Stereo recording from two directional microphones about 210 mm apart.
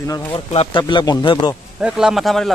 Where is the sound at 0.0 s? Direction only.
15° left (ahead or behind).